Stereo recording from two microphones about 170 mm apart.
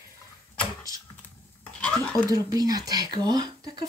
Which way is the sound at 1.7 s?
5° left (ahead or behind).